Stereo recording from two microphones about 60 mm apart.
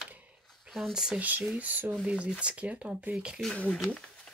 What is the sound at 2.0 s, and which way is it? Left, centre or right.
Speech, centre.